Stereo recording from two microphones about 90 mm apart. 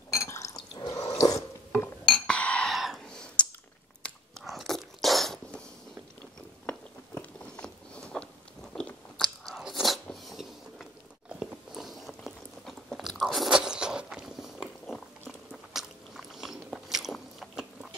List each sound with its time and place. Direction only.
0.1 s drip: 35° left (ahead or behind)
2.2 s cutlery: 15° left (ahead or behind)
2.7 s a sound: centre (ahead or behind)
3.4 s a sound: 15° left (ahead or behind)
4.5 s biting: centre (ahead or behind)
6.6 s biting: 15° left (ahead or behind)
7.6 s a sound: 10° left (ahead or behind)
8.7 s biting: 10° left (ahead or behind)
9.5 s crunch: 5° right (ahead or behind)
10.2 s train: centre (ahead or behind)
11.3 s a sound: centre (ahead or behind)
12.6 s biting: centre (ahead or behind)